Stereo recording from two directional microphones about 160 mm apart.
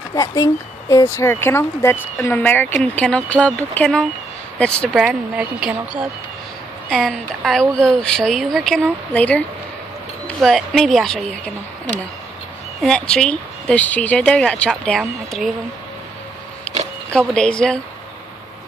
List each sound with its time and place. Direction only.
0.1 s speech: 20° left (ahead or behind); by 5.0 s 5° left (ahead or behind)
5.0 s speech: 5° right (ahead or behind)
12.8 s speech: 5° left (ahead or behind)
16.7 s vehicle: 10° left (ahead or behind)
17.3 s speech: 5° left (ahead or behind)